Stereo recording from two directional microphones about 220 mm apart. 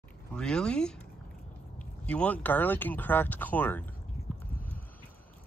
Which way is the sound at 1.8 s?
5° left (ahead or behind).